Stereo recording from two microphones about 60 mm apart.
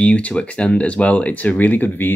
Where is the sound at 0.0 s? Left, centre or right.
Left.